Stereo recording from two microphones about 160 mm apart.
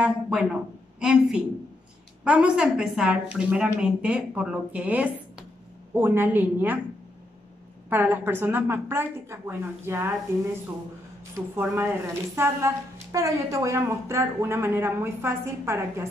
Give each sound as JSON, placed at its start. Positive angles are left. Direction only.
{"t": 0.0, "sound": "a woman's voice", "side_deg": -5}
{"t": 7.9, "sound": "a woman's voice", "side_deg": -15}
{"t": 11.3, "sound": "a woman's voice", "side_deg": -15}